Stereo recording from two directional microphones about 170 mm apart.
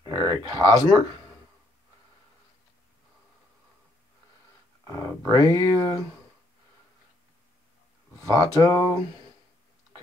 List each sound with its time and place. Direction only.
0.0 s speech: 20° left (ahead or behind)
4.8 s speech: 20° left (ahead or behind)
8.2 s speech: 20° left (ahead or behind)